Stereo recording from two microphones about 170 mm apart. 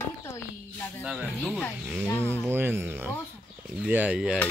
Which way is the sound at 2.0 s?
10° left (ahead or behind).